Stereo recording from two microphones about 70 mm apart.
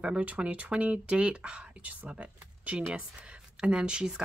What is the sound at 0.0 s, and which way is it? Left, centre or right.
Speech, centre.